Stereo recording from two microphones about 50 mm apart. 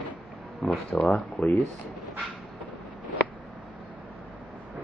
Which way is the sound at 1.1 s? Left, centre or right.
Left.